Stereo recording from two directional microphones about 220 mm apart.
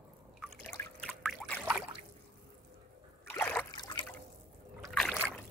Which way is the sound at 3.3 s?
10° left (ahead or behind).